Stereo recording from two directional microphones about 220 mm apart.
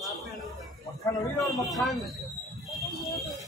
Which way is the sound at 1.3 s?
Centre (ahead or behind).